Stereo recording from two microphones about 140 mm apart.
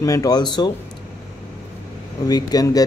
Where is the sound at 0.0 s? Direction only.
25° left (ahead or behind).